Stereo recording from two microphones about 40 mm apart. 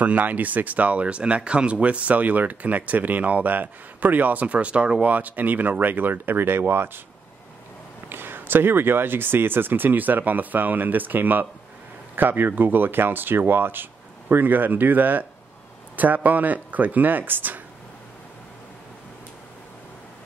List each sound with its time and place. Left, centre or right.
0.0 s speech: right
5.0 s speech: right
8.1 s speech: right